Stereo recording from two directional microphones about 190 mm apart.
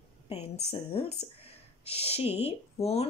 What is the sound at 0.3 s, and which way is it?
A woman's voice, 35° left (ahead or behind).